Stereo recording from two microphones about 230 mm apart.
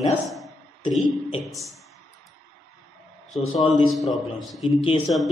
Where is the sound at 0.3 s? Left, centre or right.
Centre.